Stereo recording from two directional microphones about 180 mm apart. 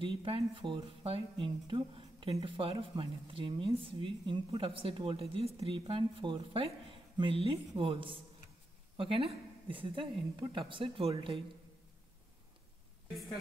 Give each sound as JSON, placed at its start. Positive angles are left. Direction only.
{"t": 0.0, "sound": "a woman's voice", "side_deg": -30}